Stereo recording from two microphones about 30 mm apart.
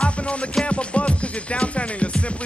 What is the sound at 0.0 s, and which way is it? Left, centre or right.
Music, left.